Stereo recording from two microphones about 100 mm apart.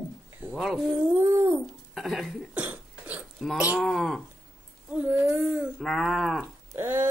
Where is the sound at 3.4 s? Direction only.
Centre (ahead or behind).